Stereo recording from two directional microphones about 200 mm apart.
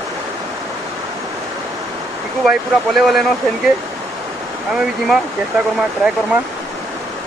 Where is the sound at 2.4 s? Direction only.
Centre (ahead or behind).